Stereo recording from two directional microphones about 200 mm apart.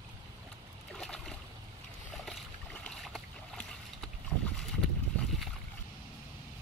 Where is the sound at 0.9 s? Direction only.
5° left (ahead or behind).